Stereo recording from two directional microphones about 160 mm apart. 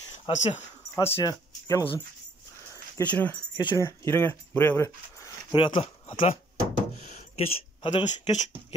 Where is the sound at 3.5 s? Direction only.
20° left (ahead or behind).